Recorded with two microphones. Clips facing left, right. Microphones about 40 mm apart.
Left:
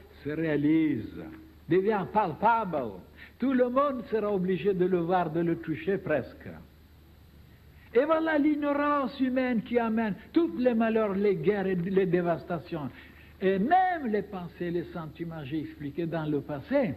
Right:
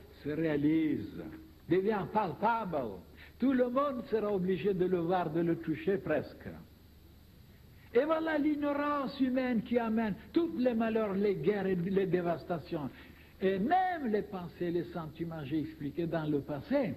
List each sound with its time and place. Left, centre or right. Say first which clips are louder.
0.2 s a man's voice: left 3 dB; left
7.9 s a man's voice: left 5 dB; left